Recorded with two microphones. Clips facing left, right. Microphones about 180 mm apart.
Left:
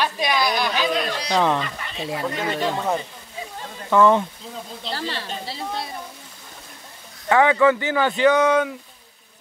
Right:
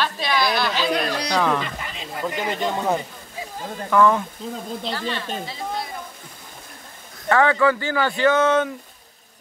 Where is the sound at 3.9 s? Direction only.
25° left (ahead or behind).